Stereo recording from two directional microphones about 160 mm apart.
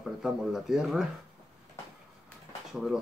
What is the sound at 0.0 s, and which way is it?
Speech, centre (ahead or behind).